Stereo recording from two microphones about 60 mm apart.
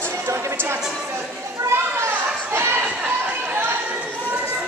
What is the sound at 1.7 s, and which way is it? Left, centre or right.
Children playing, right.